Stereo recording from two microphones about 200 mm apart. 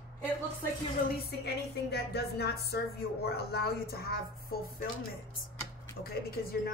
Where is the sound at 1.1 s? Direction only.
55° left (ahead or behind).